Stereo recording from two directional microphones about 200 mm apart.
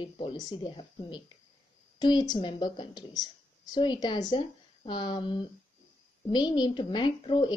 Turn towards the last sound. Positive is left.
turn(degrees=25)  # may be behind; listen again after turning